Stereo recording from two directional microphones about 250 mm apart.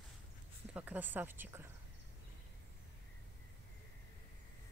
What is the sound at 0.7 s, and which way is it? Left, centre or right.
Speech, centre.